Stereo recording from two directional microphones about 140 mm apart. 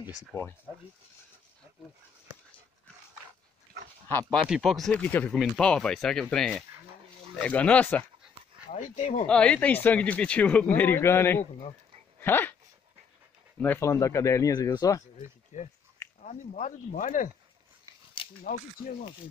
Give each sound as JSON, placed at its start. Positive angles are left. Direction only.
{"t": 0.3, "sound": "speech", "side_deg": 25}
{"t": 4.1, "sound": "speech", "side_deg": 10}
{"t": 4.5, "sound": "speech", "side_deg": -5}
{"t": 8.6, "sound": "speech", "side_deg": 60}
{"t": 9.3, "sound": "speech", "side_deg": 5}
{"t": 12.2, "sound": "dog", "side_deg": 15}
{"t": 13.6, "sound": "speech", "side_deg": 15}
{"t": 15.5, "sound": "speech", "side_deg": 60}
{"t": 18.4, "sound": "speech", "side_deg": 80}